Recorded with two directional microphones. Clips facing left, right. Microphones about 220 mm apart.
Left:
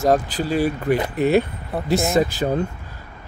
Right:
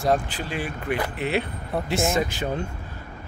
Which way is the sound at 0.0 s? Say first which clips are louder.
Left 5 dB; 40° left (ahead or behind).